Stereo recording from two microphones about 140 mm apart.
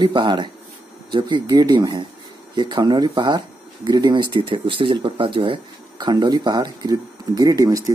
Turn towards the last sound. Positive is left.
turn(degrees=-25)  # may be behind; listen again after turning